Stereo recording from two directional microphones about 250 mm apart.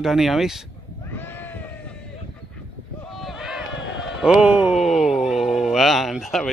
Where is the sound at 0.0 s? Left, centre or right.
Centre.